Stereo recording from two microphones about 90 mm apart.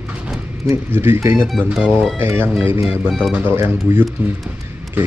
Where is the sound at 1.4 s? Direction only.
Centre (ahead or behind).